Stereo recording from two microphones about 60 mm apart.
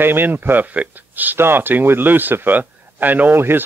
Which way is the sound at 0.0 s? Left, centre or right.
Right.